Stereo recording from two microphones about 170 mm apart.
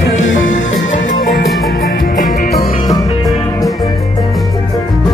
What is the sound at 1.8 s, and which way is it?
Music, 60° left (ahead or behind).